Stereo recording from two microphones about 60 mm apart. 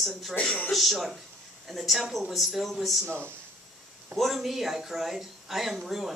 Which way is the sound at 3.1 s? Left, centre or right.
Right.